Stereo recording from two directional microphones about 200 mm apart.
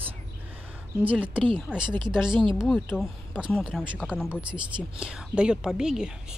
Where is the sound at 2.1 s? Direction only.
5° right (ahead or behind).